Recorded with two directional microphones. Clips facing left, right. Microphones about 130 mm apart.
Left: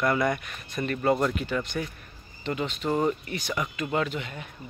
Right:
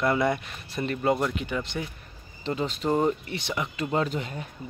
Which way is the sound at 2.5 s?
30° right (ahead or behind).